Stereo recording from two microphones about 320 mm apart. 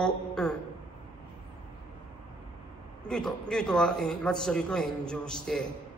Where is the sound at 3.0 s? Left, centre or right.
Centre.